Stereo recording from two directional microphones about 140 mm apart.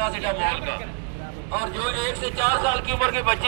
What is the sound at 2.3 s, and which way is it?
Speech, 60° left (ahead or behind).